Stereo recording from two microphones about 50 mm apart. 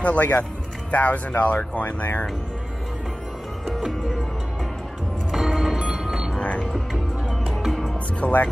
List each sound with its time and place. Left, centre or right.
0.0 s speech: left
3.6 s music: centre
5.3 s music: centre
6.7 s music: centre
8.2 s speech: left